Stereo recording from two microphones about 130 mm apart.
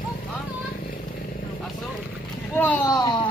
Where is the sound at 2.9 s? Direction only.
30° left (ahead or behind).